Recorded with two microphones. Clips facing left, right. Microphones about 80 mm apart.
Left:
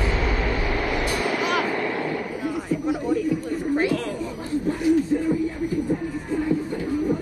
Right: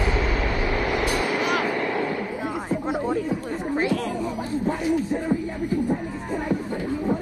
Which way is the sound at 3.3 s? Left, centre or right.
Right.